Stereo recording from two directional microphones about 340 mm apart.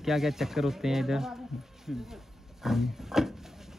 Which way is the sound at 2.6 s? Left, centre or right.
Centre.